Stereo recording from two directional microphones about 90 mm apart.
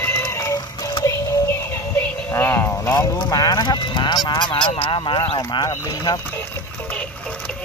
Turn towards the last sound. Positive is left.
turn(degrees=10)  # may be behind; listen again after turning